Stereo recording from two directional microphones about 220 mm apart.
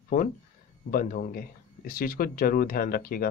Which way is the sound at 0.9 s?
40° left (ahead or behind).